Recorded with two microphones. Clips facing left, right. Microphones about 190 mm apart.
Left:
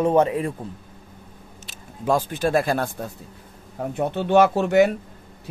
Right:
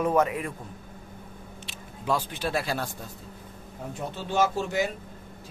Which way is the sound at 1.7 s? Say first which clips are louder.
Left 6 dB; 45° left (ahead or behind).